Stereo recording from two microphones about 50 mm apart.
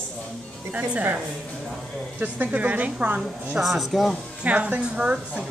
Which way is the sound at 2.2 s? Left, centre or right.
Right.